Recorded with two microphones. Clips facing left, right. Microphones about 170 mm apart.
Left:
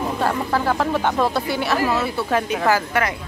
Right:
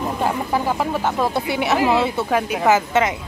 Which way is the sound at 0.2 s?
15° right (ahead or behind).